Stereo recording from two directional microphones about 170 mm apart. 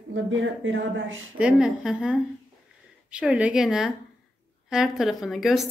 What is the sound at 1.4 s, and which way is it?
A woman's voice, 5° right (ahead or behind).